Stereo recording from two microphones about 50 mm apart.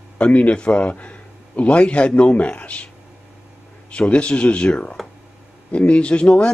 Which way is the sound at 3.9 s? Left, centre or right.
Left.